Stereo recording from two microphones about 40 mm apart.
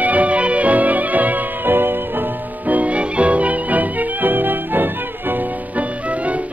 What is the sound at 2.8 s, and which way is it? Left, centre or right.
Music, right.